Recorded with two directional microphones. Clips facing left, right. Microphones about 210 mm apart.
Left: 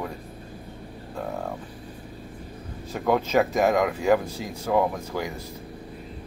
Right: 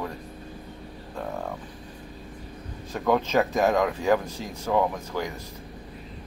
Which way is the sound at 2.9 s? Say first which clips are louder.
Left 1 dB; 10° left (ahead or behind).